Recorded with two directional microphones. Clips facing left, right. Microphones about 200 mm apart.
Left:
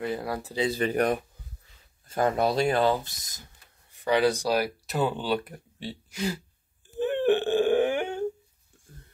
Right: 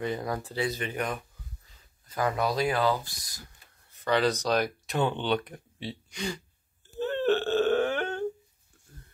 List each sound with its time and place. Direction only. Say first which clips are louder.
0.0 s speech: left 1 dB; 5° left (ahead or behind)
0.6 s speech: left 8 dB; 30° left (ahead or behind); by 6.4 s 5° left (ahead or behind)
6.9 s burping: left 3 dB; 15° left (ahead or behind)